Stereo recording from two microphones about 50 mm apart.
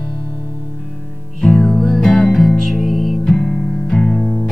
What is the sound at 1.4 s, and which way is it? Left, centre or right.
Music, centre.